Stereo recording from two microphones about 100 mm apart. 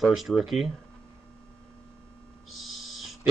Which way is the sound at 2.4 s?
Centre (ahead or behind).